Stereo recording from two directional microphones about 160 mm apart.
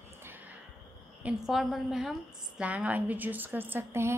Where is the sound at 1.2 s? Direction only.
5° right (ahead or behind).